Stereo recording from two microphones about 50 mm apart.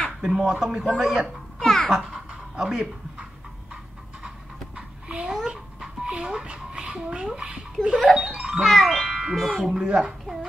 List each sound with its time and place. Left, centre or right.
0.2 s speech: centre
1.6 s music: centre
2.0 s speech: centre
4.7 s a sound: centre
5.5 s dog: centre
7.3 s a child's voice: centre
8.5 s a child's voice: centre
9.7 s speech: centre